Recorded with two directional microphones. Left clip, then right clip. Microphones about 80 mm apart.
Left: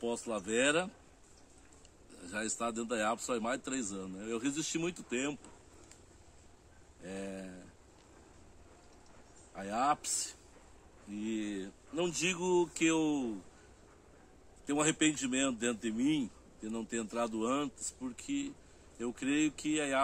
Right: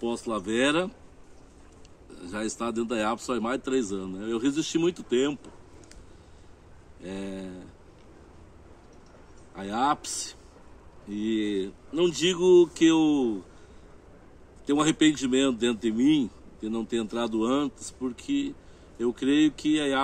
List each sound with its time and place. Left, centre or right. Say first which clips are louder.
0.0 s a man's voice: right 7 dB; left
2.1 s a man's voice: right 6 dB; left
7.0 s a man's voice: right 6 dB; left
9.6 s a man's voice: right 6 dB; centre
14.7 s a man's voice: right 8 dB; centre